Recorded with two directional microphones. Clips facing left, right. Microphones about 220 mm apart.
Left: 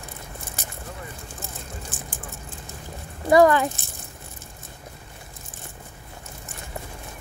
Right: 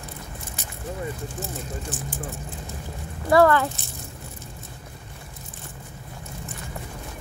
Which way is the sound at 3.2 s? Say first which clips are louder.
Left 1 dB; 15° left (ahead or behind).